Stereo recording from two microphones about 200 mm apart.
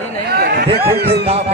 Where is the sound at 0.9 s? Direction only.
50° right (ahead or behind).